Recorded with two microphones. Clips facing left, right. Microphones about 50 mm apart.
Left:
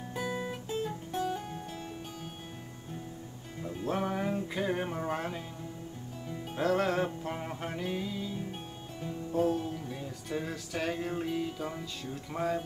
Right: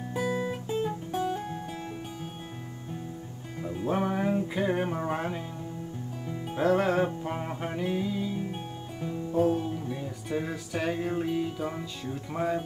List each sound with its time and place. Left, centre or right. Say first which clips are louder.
0.1 s music: right 6 dB; centre
1.1 s music: right 2 dB; right
3.6 s music: right 4 dB; centre